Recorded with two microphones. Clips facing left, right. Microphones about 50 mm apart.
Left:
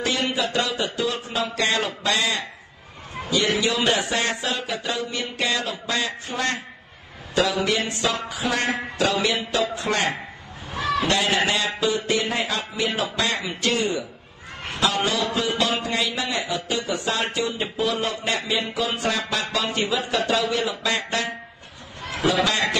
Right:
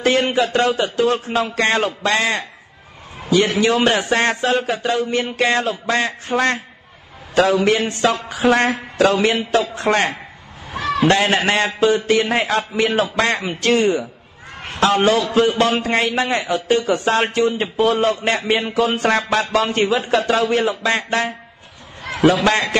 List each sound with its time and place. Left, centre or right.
0.0 s a man's voice: right
22.0 s a sound: right
22.3 s a man's voice: right